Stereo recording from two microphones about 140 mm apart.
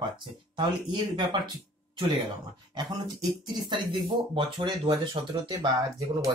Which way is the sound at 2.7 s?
30° right (ahead or behind).